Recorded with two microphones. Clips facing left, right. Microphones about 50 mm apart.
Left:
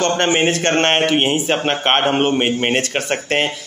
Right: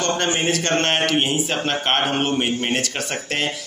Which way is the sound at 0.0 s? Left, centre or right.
Left.